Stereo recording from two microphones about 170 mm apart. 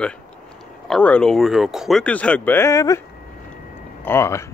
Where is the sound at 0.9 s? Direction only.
5° left (ahead or behind).